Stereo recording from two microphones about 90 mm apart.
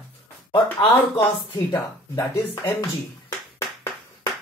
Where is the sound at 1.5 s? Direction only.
50° left (ahead or behind).